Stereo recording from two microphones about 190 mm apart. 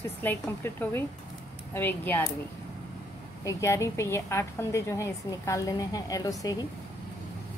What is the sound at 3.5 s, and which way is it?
A woman's voice, 15° left (ahead or behind).